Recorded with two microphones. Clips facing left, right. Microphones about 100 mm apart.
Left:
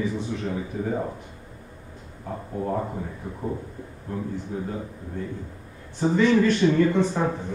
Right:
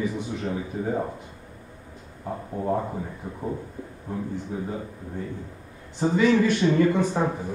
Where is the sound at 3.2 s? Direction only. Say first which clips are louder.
Even; centre (ahead or behind).